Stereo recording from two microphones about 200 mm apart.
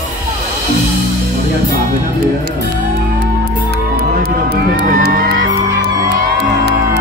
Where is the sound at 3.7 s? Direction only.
55° right (ahead or behind).